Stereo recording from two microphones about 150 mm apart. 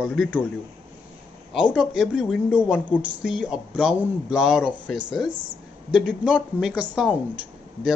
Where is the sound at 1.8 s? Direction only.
5° right (ahead or behind).